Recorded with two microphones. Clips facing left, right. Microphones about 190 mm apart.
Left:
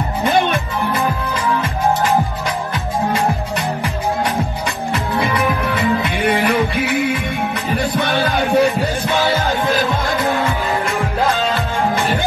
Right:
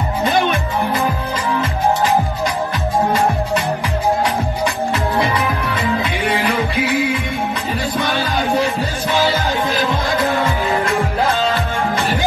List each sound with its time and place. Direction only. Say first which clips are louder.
6.0 s music: left 2 dB; 55° left (ahead or behind)